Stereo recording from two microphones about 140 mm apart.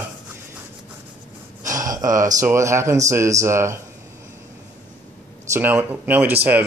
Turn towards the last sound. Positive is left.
turn(degrees=-10)  # may be behind; listen again after turning